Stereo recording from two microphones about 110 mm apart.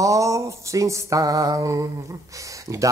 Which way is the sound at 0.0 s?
30° right (ahead or behind).